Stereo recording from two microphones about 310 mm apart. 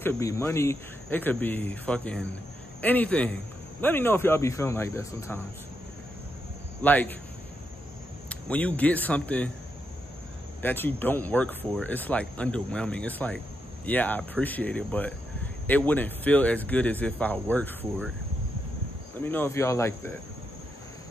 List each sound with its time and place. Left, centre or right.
0.0 s speech: centre
6.8 s speech: centre
8.3 s speech: centre
10.6 s speech: centre
19.2 s speech: centre